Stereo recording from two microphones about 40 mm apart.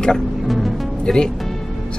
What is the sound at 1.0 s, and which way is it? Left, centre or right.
Speech, centre.